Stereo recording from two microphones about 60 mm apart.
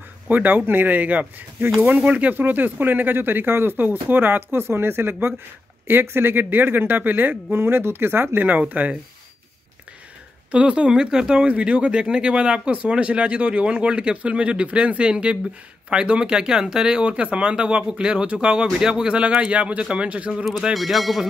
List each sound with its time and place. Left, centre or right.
0.3 s speech: right
10.5 s speech: centre
20.7 s speech: centre